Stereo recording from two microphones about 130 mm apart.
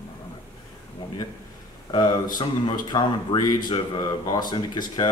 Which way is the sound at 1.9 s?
30° left (ahead or behind).